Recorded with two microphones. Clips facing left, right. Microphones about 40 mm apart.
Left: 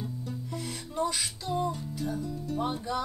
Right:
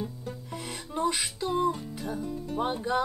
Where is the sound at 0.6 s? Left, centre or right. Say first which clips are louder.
Right 1 dB; right.